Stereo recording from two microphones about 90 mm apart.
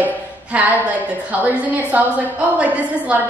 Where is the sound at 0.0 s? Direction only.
15° right (ahead or behind).